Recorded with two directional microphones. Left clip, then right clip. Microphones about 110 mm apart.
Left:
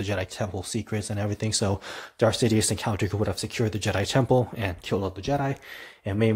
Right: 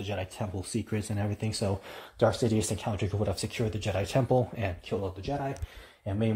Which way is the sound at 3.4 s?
20° left (ahead or behind).